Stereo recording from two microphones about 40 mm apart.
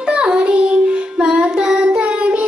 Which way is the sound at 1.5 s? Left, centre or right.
Right.